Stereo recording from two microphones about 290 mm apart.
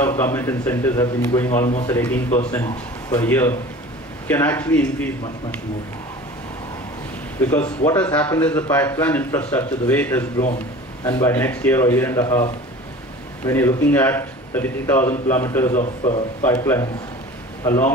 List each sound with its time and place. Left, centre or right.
0.0 s speech: centre
7.3 s speech: centre
13.5 s speech: centre
15.7 s a man's voice: left
16.4 s speech: centre